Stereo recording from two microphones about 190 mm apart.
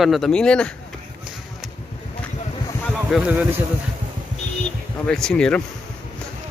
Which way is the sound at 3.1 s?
5° right (ahead or behind).